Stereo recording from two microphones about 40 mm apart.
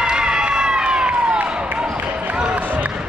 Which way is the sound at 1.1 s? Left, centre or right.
Right.